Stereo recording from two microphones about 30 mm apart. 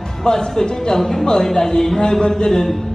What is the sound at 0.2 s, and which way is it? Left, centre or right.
Speech, left.